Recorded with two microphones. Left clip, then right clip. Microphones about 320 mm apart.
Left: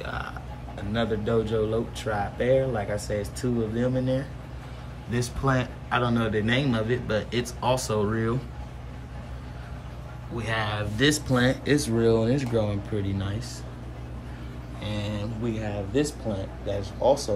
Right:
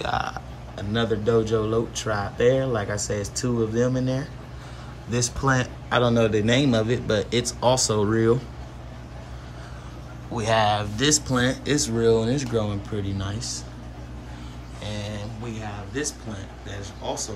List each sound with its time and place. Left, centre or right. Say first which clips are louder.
0.0 s a man's voice: right 8 dB; centre
10.3 s speech: right 8 dB; centre
14.8 s a sound: even; centre
16.6 s a man's voice: left 10 dB; centre